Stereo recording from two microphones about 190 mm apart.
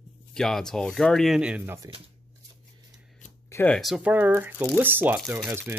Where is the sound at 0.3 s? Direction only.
5° left (ahead or behind).